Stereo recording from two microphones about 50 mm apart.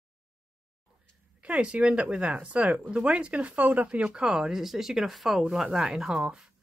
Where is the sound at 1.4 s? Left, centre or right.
Right.